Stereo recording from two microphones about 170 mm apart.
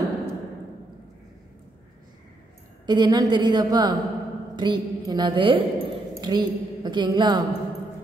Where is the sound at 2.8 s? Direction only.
25° right (ahead or behind).